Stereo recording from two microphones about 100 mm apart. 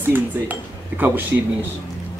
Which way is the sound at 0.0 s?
20° right (ahead or behind).